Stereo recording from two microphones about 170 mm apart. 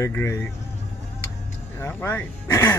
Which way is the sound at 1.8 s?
15° left (ahead or behind).